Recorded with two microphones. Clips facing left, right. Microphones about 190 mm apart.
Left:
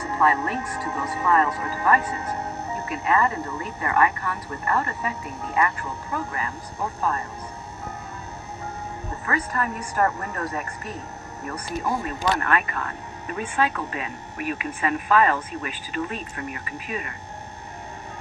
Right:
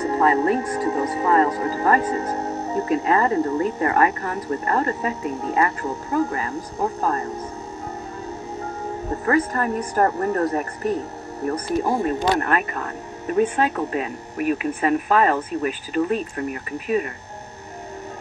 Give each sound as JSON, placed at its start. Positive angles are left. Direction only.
{"t": 0.0, "sound": "speech", "side_deg": -30}
{"t": 9.2, "sound": "speech", "side_deg": -40}